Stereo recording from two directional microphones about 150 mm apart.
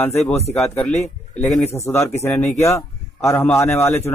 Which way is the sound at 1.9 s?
15° left (ahead or behind).